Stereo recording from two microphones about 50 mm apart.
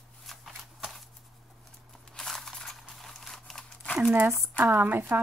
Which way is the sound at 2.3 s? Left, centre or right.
Centre.